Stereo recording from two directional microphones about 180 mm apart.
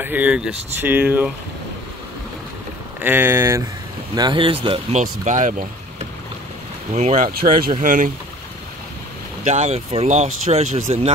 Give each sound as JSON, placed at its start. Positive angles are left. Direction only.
{"t": 0.0, "sound": "speech", "side_deg": -10}
{"t": 3.0, "sound": "speech", "side_deg": -10}
{"t": 5.0, "sound": "speech", "side_deg": -45}
{"t": 9.4, "sound": "speech", "side_deg": -40}